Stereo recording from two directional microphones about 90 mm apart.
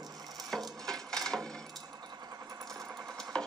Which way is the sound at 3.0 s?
5° left (ahead or behind).